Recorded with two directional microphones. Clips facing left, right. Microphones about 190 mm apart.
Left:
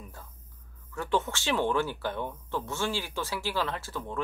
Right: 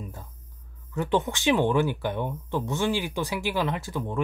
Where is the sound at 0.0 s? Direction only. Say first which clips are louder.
Right 7 dB; 20° right (ahead or behind).